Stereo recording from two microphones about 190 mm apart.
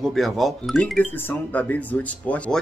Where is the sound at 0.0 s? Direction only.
Centre (ahead or behind).